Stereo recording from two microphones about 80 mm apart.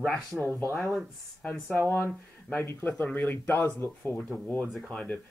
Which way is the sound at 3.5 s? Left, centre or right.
Left.